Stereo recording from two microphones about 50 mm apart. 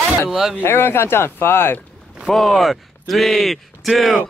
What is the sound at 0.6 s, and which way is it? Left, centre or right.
Speech, left.